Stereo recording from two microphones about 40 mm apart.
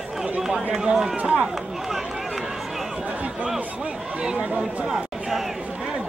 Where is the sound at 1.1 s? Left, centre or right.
Right.